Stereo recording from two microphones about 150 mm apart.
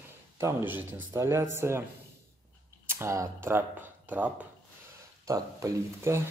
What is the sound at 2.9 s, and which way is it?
Speech, 15° right (ahead or behind).